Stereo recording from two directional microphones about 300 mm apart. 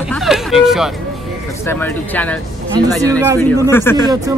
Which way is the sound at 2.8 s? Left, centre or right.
Centre.